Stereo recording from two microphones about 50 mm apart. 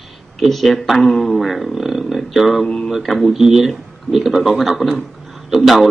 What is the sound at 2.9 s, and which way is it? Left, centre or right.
Speech, centre.